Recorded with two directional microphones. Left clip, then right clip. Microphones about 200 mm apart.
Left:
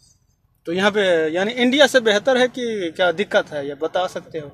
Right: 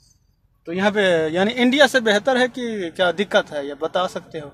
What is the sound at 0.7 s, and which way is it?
Speech, 15° left (ahead or behind).